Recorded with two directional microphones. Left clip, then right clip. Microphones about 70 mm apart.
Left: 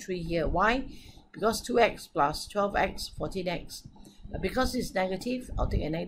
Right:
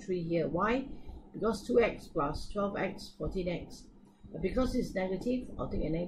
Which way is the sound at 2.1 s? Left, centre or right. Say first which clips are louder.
Left 7 dB; left.